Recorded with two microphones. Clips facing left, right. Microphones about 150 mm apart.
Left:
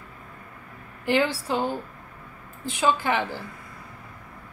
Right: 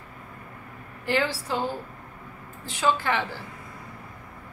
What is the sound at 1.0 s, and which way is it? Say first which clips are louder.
Speech: left 3 dB; 15° left (ahead or behind).